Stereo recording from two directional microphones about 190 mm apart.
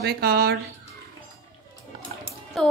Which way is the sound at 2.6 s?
5° left (ahead or behind).